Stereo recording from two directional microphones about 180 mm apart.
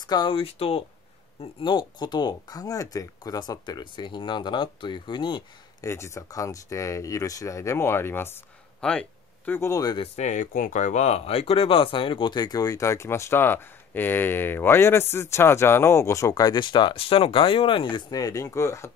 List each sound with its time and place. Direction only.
0.0 s speech: 25° left (ahead or behind); by 9.0 s 5° left (ahead or behind)
9.5 s speech: 15° left (ahead or behind)
10.1 s speech: 40° left (ahead or behind); by 18.9 s 15° left (ahead or behind)